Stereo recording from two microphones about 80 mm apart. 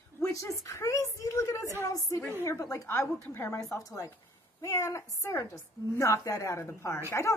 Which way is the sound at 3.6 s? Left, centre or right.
Left.